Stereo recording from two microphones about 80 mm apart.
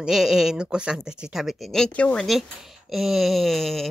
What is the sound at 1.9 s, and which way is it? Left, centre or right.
Speech, centre.